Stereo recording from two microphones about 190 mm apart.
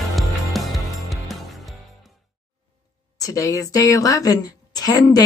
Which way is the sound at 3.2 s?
15° left (ahead or behind).